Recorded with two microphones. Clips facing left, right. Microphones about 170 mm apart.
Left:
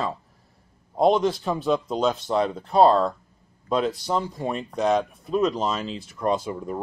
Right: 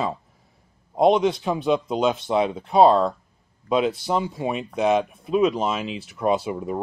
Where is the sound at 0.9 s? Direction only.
Centre (ahead or behind).